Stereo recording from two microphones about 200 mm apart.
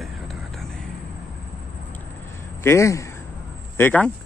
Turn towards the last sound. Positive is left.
turn(degrees=10)  # may be behind; listen again after turning